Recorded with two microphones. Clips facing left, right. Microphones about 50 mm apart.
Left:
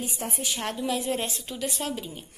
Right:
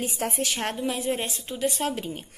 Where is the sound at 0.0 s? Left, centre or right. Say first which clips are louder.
Right 4 dB; right.